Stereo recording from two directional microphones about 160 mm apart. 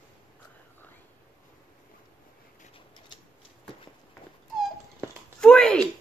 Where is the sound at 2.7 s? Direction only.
30° left (ahead or behind).